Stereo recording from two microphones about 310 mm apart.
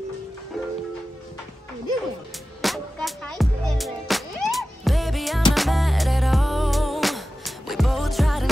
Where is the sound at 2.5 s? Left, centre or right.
Centre.